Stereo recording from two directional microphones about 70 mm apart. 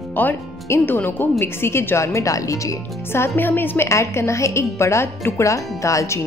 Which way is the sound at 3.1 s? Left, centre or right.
Left.